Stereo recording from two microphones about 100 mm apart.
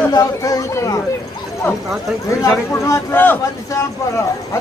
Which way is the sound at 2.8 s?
30° left (ahead or behind).